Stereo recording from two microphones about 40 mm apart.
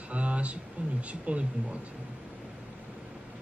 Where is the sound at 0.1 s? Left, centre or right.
Right.